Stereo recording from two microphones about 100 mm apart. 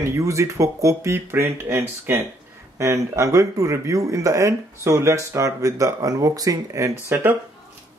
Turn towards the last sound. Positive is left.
turn(degrees=-25)  # may be behind; listen again after turning